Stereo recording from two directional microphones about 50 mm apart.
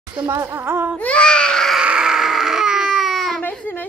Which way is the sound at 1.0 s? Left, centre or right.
Left.